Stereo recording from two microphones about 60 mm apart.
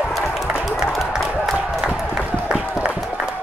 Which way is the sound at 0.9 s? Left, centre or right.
Centre.